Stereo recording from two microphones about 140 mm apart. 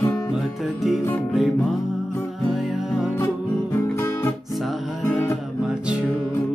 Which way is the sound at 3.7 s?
20° left (ahead or behind).